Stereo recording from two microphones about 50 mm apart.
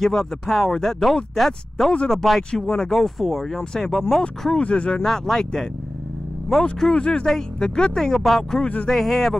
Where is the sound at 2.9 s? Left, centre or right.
Centre.